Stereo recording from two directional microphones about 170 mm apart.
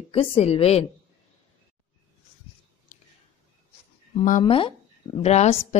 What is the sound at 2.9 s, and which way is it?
Whispering, 50° left (ahead or behind).